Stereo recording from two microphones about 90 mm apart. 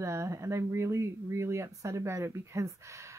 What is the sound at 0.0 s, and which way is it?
A woman's voice, 35° right (ahead or behind).